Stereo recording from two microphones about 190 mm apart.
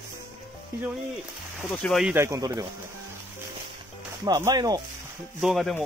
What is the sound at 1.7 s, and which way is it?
Speech, centre (ahead or behind).